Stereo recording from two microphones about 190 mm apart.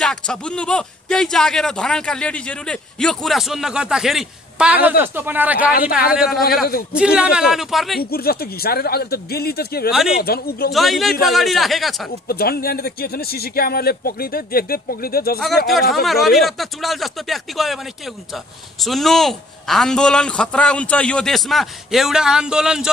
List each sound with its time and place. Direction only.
0.0 s speech: 5° left (ahead or behind)
8.0 s a man's voice: 55° left (ahead or behind)
10.7 s speech: centre (ahead or behind)
12.3 s speech: 55° left (ahead or behind)
15.4 s speech: centre (ahead or behind)